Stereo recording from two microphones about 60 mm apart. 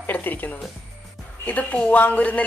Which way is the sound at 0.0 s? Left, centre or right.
Left.